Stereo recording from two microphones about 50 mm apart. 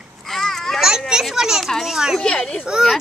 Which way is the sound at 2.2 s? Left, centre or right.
Centre.